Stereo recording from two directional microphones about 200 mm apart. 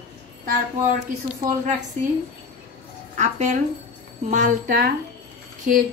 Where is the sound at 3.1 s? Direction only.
35° right (ahead or behind).